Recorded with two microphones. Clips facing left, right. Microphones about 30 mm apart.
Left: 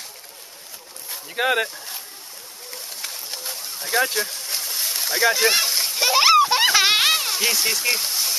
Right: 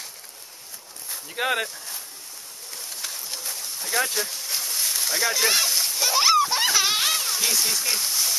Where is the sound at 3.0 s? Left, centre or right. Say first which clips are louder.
Left 1 dB; centre.